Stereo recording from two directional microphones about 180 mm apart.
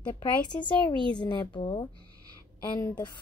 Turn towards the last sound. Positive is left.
turn(degrees=20)  # may be behind; listen again after turning